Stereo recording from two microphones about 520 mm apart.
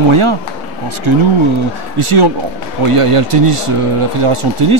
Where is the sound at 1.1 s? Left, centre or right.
Right.